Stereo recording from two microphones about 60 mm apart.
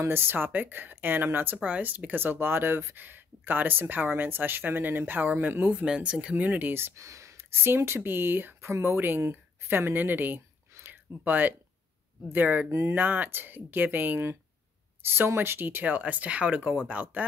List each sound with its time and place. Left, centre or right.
0.0 s speech: right
1.6 s speech: right
5.9 s speech: centre; by 6.9 s right
7.0 s speech: right
8.6 s speech: right
10.8 s a sound: right
12.3 s speech: right